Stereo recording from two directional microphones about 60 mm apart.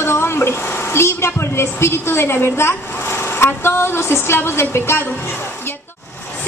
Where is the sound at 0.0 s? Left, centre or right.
Left.